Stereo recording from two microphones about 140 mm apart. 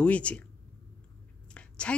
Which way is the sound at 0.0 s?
10° left (ahead or behind).